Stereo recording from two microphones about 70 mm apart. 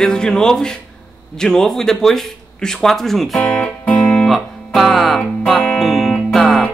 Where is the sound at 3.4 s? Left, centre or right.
Centre.